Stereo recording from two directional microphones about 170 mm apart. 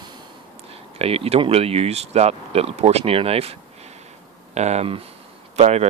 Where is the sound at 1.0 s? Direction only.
35° right (ahead or behind).